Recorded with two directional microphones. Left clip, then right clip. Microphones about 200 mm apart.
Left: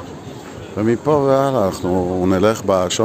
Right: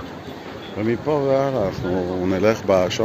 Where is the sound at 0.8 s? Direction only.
45° left (ahead or behind).